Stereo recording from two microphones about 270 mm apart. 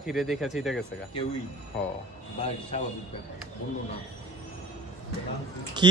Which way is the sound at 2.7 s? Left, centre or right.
Left.